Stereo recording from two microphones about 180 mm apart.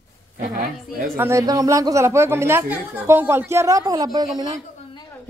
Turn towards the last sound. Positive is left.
turn(degrees=-25)  # may be behind; listen again after turning